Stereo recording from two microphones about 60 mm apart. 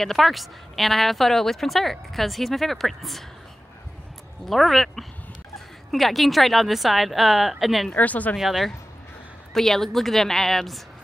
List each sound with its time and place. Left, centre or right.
0.0 s speech: centre
4.5 s speech: centre
7.9 s speech: left
8.4 s speech: centre